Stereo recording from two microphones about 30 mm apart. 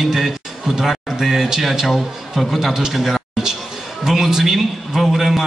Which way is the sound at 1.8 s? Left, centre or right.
Centre.